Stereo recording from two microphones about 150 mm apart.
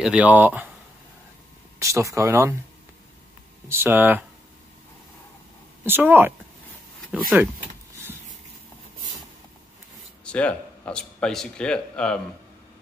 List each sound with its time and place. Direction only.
0.0 s speech: 10° right (ahead or behind)
1.8 s speech: 20° right (ahead or behind)
3.6 s speech: 15° right (ahead or behind)
5.9 s speech: 15° right (ahead or behind)
10.2 s speech: 5° left (ahead or behind)